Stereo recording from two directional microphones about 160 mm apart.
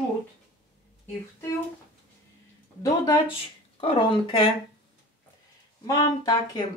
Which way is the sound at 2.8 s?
25° left (ahead or behind).